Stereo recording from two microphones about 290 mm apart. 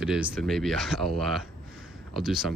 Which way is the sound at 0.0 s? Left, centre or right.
Centre.